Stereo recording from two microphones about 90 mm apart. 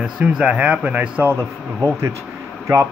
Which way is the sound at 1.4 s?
30° right (ahead or behind).